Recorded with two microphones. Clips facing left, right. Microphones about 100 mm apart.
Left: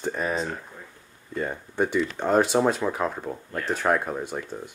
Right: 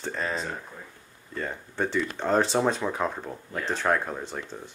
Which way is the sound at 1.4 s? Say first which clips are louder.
Left 4 dB; 15° left (ahead or behind).